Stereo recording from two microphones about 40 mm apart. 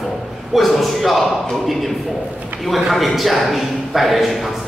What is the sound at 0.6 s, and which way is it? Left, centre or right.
A man's voice, centre.